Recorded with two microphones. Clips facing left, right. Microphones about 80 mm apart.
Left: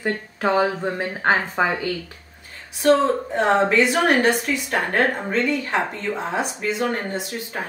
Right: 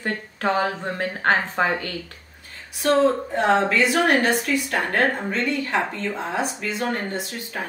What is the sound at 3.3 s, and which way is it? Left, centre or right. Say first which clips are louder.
A woman's voice: left 4 dB; left.